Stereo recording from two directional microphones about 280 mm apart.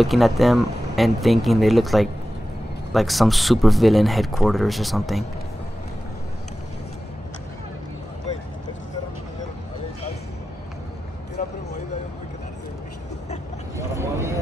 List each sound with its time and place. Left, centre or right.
0.0 s speech: centre
11.4 s a sound: left
13.7 s vehicle: centre